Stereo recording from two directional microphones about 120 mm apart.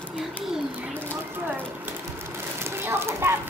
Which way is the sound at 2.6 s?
20° right (ahead or behind).